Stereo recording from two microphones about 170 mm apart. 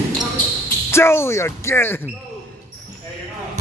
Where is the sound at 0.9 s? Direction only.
15° left (ahead or behind).